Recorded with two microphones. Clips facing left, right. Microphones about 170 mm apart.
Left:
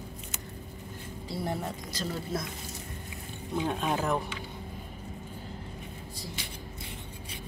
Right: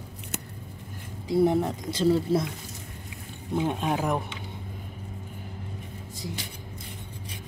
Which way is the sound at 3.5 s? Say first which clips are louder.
Right 3 dB; 20° right (ahead or behind).